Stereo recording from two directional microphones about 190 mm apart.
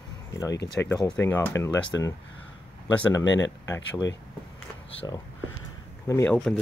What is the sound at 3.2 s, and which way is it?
Speech, 75° left (ahead or behind).